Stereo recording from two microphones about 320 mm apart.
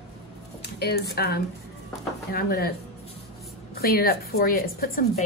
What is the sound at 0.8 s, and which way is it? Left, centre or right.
A woman's voice, left.